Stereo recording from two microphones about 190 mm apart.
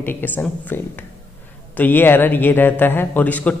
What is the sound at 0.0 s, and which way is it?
Speech, 10° left (ahead or behind).